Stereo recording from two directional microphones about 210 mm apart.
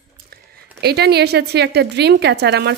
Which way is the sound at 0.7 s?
50° right (ahead or behind).